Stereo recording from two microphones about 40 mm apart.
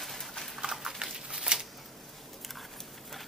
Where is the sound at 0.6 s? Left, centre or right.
Centre.